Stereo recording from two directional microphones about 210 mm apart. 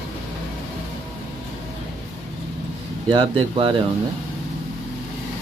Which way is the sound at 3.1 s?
20° right (ahead or behind).